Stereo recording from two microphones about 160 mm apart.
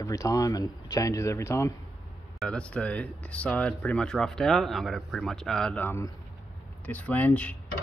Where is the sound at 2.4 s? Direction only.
5° left (ahead or behind).